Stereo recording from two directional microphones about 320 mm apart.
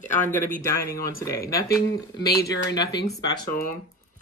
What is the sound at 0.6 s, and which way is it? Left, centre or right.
Speech, centre.